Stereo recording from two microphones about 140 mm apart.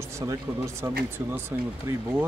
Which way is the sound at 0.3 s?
20° right (ahead or behind).